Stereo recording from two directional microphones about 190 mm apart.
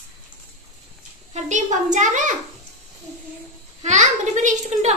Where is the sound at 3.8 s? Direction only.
40° right (ahead or behind).